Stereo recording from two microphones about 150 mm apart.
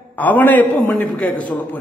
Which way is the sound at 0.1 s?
10° left (ahead or behind).